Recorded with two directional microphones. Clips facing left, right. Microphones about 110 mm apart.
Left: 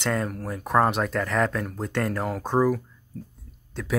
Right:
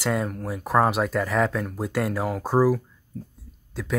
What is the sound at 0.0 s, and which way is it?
Speech, 5° right (ahead or behind).